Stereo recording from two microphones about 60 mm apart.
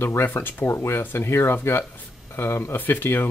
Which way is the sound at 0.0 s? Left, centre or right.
Left.